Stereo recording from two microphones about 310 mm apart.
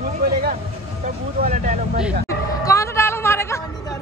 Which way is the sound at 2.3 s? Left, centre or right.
Centre.